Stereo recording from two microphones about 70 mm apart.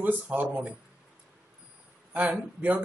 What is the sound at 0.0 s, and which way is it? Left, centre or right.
Speech, right.